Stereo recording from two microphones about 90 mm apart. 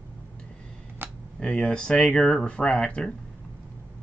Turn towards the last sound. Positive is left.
turn(degrees=10)  # may be behind; listen again after turning